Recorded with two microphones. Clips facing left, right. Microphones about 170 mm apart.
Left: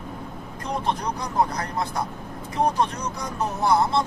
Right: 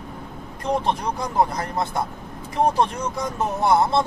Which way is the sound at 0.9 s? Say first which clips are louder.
Right 2 dB; 25° right (ahead or behind).